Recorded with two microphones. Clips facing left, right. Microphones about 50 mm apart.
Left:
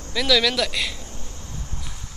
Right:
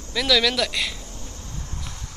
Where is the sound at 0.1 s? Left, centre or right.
Centre.